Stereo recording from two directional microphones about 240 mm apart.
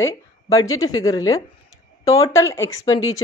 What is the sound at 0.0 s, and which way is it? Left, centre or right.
A woman's voice, centre.